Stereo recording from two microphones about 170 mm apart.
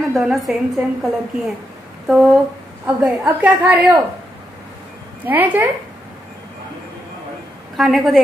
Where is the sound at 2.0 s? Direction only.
Centre (ahead or behind).